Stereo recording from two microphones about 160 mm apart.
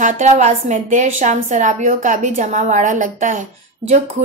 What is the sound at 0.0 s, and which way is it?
A woman's voice, 50° right (ahead or behind).